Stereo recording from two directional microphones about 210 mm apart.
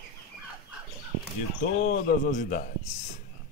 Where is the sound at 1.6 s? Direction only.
35° left (ahead or behind).